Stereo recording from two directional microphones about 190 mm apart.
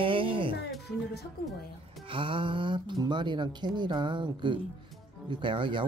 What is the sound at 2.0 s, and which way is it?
Speech, 25° right (ahead or behind).